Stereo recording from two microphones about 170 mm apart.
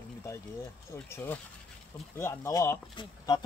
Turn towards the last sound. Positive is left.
turn(degrees=25)  # may be behind; listen again after turning